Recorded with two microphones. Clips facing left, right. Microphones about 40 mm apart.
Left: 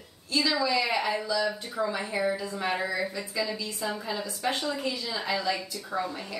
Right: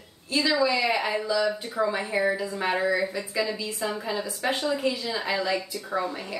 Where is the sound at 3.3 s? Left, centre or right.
Right.